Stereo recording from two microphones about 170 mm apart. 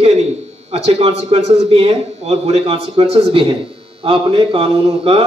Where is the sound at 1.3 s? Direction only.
35° right (ahead or behind).